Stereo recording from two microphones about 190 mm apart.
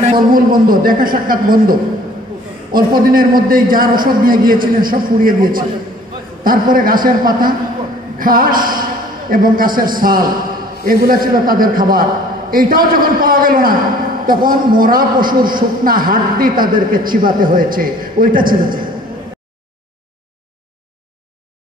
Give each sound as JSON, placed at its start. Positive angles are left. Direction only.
{"t": 0.3, "sound": "a man's voice", "side_deg": -50}